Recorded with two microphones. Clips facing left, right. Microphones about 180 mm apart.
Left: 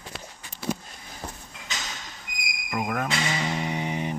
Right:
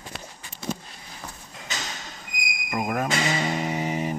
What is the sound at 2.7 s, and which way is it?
Music, 10° right (ahead or behind).